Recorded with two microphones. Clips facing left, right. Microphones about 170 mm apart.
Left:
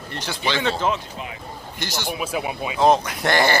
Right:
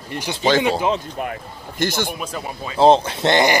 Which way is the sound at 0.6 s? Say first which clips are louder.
Right 4 dB; 15° right (ahead or behind).